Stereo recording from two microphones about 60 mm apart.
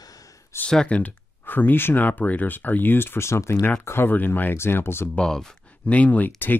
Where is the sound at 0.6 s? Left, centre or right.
Centre.